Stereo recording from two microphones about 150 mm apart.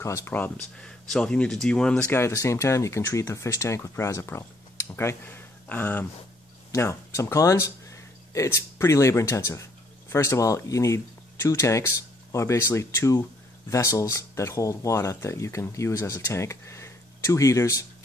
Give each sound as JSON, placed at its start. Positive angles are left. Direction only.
{"t": 0.0, "sound": "speech", "side_deg": 20}